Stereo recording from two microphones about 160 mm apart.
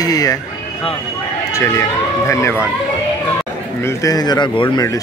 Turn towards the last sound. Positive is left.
turn(degrees=25)  # may be behind; listen again after turning